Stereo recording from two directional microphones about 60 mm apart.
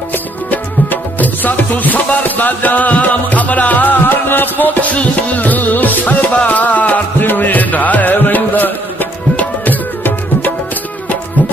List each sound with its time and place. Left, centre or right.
0.5 s music: left